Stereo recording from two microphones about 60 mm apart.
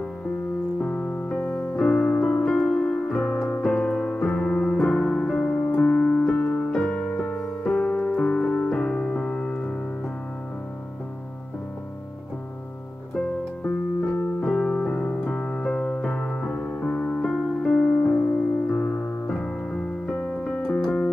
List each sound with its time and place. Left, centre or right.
0.7 s piano: centre
5.7 s electric piano: left
13.1 s music: centre
14.4 s keyboard: centre
15.2 s piano: centre
18.7 s music: centre
19.4 s keyboard: centre